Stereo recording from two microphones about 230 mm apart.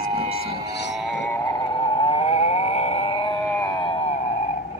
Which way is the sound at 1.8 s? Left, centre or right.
Left.